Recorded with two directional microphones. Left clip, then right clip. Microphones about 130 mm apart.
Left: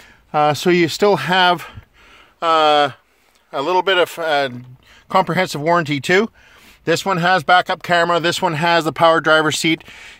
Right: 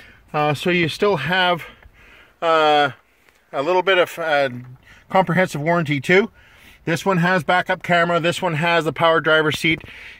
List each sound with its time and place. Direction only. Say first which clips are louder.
0.3 s speech: left 4 dB; 45° left (ahead or behind)
2.4 s speech: left 2 dB; 35° left (ahead or behind)
5.9 s speech: left 1 dB; 60° left (ahead or behind)
7.1 s speech: left 3 dB; 35° left (ahead or behind)